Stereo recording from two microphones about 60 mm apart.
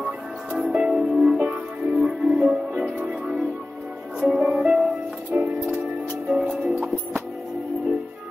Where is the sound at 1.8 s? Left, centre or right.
Centre.